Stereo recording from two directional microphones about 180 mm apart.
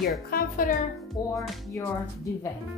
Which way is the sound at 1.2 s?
20° left (ahead or behind).